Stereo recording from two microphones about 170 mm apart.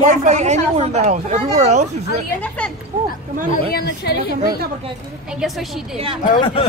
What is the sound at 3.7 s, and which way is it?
Speech, 70° left (ahead or behind).